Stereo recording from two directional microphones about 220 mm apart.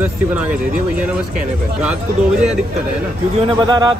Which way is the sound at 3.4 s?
20° right (ahead or behind).